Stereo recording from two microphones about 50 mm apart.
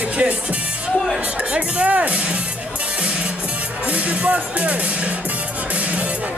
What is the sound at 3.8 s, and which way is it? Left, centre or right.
Speech, right.